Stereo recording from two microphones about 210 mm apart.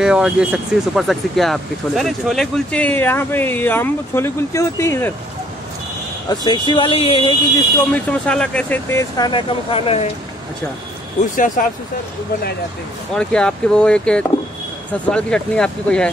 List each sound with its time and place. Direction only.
0.0 s speech: 5° right (ahead or behind)
6.2 s speech: 20° left (ahead or behind)
7.9 s speech: 5° left (ahead or behind); by 10.0 s 30° left (ahead or behind)
11.2 s speech: 40° left (ahead or behind)
13.1 s speech: 5° left (ahead or behind)